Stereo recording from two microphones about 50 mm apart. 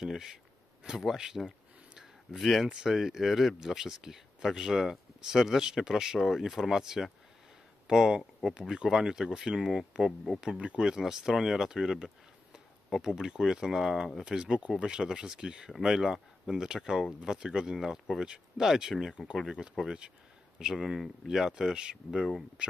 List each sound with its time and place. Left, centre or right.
0.0 s speech: centre
2.3 s speech: centre
10.6 s speech: right
10.9 s speech: centre
14.2 s speech: centre